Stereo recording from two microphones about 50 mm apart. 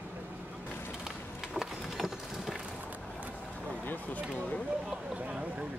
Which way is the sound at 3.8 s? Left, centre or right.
Left.